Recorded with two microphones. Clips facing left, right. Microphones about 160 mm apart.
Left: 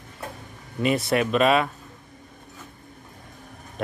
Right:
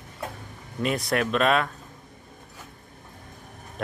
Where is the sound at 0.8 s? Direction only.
Centre (ahead or behind).